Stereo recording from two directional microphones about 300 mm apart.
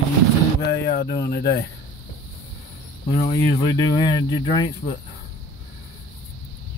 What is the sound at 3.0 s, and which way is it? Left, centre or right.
Speech, centre.